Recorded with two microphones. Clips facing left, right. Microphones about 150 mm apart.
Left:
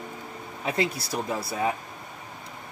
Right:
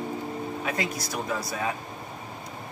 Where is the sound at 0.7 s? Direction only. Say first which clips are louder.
Left 3 dB; 30° left (ahead or behind).